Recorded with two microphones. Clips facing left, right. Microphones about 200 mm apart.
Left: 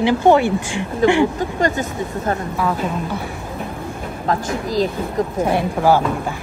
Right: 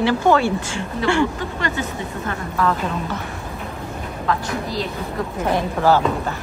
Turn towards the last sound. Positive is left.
turn(degrees=10)  # may be behind; listen again after turning